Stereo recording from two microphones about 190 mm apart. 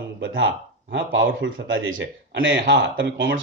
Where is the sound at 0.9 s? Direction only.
75° right (ahead or behind).